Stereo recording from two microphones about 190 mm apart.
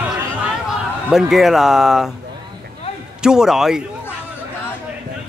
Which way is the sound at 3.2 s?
5° right (ahead or behind).